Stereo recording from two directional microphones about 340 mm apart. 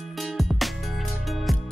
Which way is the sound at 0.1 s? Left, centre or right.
Centre.